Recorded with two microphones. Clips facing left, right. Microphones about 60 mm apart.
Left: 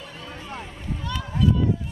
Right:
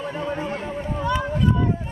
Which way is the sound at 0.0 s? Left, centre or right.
Right.